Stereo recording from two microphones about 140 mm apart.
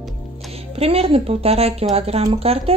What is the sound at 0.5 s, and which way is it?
Speech, 45° right (ahead or behind).